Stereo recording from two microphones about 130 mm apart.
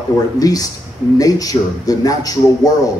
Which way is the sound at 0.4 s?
30° left (ahead or behind).